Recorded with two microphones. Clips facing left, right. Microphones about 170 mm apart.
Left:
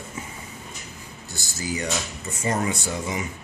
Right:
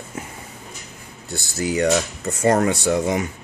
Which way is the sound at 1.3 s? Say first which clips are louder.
Right 7 dB; 60° right (ahead or behind).